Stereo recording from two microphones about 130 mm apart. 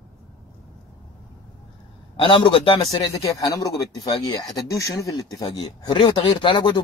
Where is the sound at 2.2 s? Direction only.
40° left (ahead or behind).